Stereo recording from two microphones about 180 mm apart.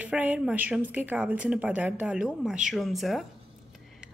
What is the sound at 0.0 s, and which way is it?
A woman's voice, 10° right (ahead or behind).